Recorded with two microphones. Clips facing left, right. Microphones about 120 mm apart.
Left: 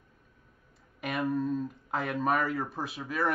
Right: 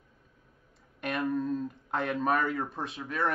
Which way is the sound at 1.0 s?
5° left (ahead or behind).